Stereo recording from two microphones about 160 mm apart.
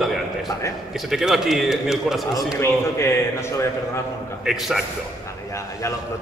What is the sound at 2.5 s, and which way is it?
Speech, 15° left (ahead or behind).